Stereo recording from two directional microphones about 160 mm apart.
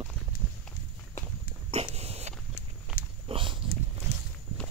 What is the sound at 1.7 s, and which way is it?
Dog, 40° right (ahead or behind).